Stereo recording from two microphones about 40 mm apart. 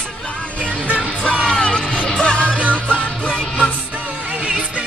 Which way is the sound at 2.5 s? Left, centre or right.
Right.